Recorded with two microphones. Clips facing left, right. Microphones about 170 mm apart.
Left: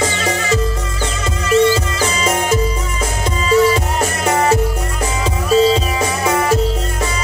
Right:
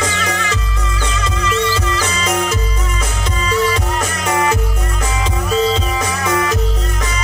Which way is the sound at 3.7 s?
30° left (ahead or behind).